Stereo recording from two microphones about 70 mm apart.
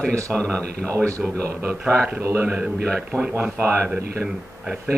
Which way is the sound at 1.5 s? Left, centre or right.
Right.